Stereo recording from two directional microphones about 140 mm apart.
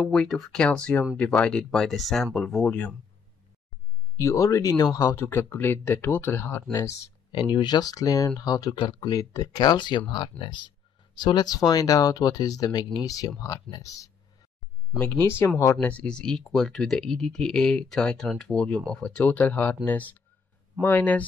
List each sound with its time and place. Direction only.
0.0 s speech: 5° left (ahead or behind)
4.2 s speech: 20° left (ahead or behind)
15.9 s speech: 10° left (ahead or behind)